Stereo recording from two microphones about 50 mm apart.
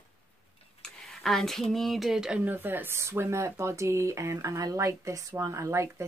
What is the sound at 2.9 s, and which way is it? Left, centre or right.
Speech, right.